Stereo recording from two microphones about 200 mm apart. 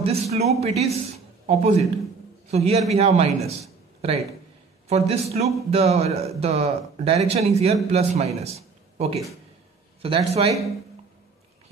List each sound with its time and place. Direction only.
0.0 s a man's voice: 30° right (ahead or behind)